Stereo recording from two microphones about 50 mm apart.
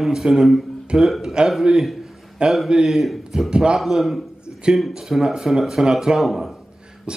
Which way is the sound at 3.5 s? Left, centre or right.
Centre.